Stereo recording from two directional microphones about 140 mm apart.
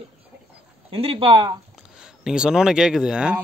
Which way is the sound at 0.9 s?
40° right (ahead or behind).